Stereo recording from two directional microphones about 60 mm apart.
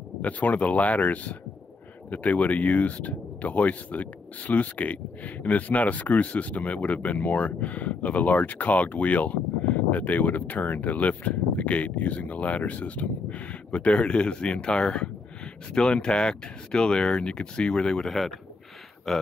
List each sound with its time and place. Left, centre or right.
0.2 s speech: left; by 19.2 s centre